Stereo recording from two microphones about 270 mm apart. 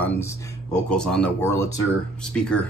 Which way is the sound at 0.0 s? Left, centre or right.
Centre.